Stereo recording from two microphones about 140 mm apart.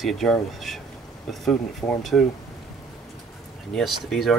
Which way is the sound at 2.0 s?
Centre (ahead or behind).